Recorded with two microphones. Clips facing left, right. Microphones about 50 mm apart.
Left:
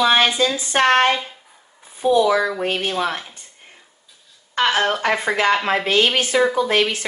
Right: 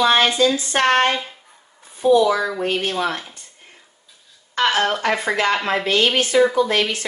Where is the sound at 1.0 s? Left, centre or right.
Centre.